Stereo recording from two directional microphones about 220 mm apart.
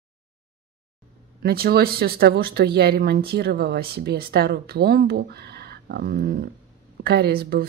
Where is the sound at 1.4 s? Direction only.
45° right (ahead or behind).